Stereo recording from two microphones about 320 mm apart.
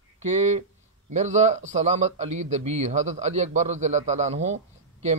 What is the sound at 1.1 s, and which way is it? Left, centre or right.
A man's voice, right.